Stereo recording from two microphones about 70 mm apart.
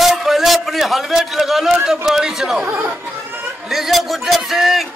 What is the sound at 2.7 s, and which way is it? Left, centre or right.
Speech, right.